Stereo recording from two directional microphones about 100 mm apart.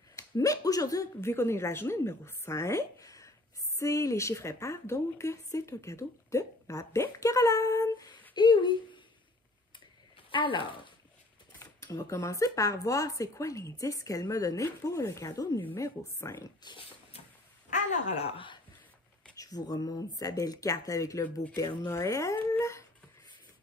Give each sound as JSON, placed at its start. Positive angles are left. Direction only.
{"t": 0.1, "sound": "a woman's voice", "side_deg": 35}
{"t": 10.3, "sound": "speech", "side_deg": 55}
{"t": 11.6, "sound": "a woman's voice", "side_deg": 30}
{"t": 16.6, "sound": "speech", "side_deg": 45}
{"t": 18.1, "sound": "speech", "side_deg": 80}
{"t": 19.3, "sound": "speech", "side_deg": 40}